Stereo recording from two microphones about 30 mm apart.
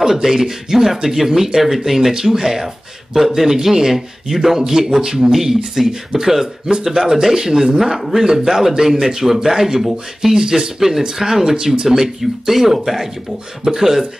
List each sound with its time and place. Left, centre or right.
0.0 s speech: centre